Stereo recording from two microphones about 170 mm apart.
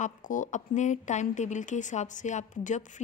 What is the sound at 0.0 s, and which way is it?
Speech, 50° left (ahead or behind).